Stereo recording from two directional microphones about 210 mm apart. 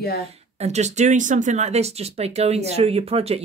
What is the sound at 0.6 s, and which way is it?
Speech, 30° right (ahead or behind).